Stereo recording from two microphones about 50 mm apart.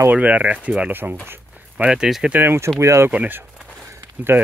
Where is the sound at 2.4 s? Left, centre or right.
Right.